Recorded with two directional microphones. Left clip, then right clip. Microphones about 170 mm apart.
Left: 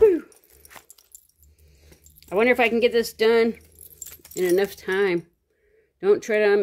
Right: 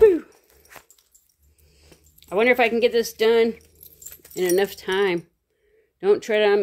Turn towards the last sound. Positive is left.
turn(degrees=0)  # may be behind; listen again after turning